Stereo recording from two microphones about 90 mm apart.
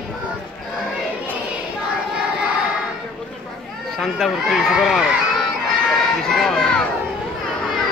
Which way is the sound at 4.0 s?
Centre (ahead or behind).